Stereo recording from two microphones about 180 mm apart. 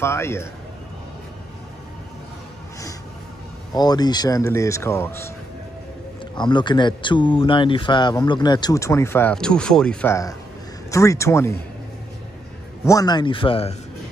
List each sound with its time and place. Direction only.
0.0 s speech: 15° left (ahead or behind)
3.7 s speech: 20° left (ahead or behind)
6.3 s speech: 25° left (ahead or behind); by 10.1 s 5° left (ahead or behind)
10.9 s speech: 15° left (ahead or behind)
12.8 s speech: 20° left (ahead or behind)